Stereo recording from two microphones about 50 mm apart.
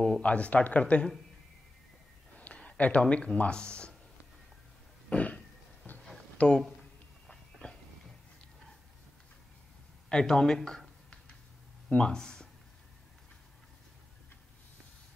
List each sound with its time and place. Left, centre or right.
0.2 s speech: left
2.3 s speech: left
5.1 s a sound: left
6.3 s speech: left
10.0 s speech: centre
11.9 s speech: centre